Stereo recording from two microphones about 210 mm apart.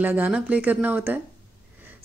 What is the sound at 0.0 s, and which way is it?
Speech, 10° right (ahead or behind).